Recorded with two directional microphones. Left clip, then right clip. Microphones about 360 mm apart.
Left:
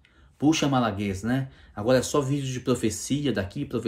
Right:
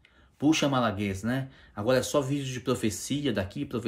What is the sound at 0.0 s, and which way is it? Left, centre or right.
Speech, centre.